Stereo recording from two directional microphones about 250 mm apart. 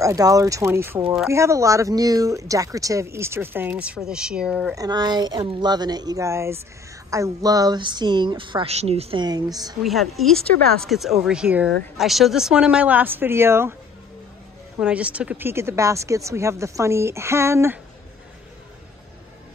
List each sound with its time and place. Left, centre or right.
0.0 s speech: centre
9.8 s speech: centre
14.8 s speech: centre